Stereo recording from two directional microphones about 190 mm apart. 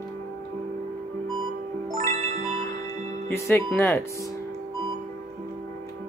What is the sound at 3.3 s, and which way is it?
Speech, 10° left (ahead or behind).